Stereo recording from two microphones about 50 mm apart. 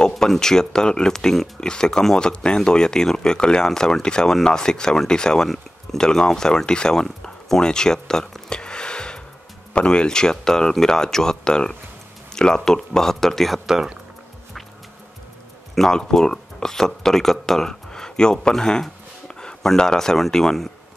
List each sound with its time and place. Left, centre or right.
0.2 s speech: centre
8.5 s a sound: centre
9.8 s speech: centre
15.7 s speech: centre